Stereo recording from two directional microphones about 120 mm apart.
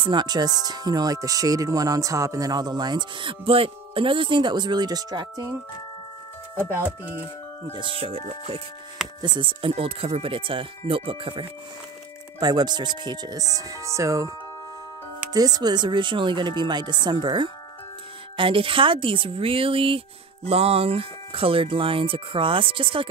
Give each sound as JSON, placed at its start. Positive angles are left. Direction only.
{"t": 0.0, "sound": "speech", "side_deg": -40}
{"t": 6.5, "sound": "speech", "side_deg": -15}
{"t": 7.7, "sound": "speech", "side_deg": -45}
{"t": 9.2, "sound": "speech", "side_deg": -40}
{"t": 12.4, "sound": "speech", "side_deg": -35}
{"t": 15.3, "sound": "speech", "side_deg": -35}